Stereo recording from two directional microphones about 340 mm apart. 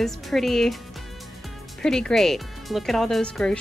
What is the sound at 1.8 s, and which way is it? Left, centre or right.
Speech, centre.